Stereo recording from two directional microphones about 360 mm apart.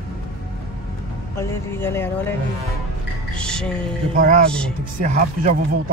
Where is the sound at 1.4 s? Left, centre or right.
Centre.